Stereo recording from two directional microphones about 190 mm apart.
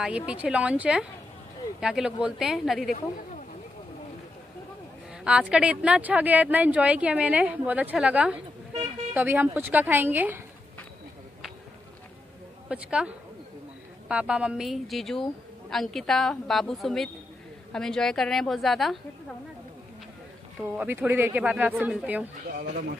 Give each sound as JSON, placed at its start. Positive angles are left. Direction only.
{"t": 0.0, "sound": "a woman's voice", "side_deg": -5}
{"t": 5.2, "sound": "speech", "side_deg": -5}
{"t": 12.6, "sound": "a woman's voice", "side_deg": -5}
{"t": 20.6, "sound": "speech", "side_deg": -10}
{"t": 22.6, "sound": "a man's voice", "side_deg": -50}